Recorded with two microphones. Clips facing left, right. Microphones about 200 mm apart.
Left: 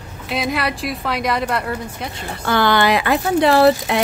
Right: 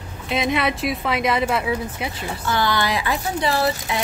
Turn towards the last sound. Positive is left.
turn(degrees=65)  # may be behind; listen again after turning